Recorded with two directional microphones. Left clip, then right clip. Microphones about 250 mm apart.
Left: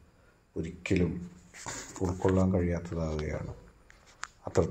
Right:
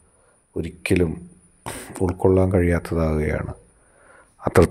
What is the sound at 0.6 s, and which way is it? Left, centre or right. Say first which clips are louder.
Speech: right 10 dB; right.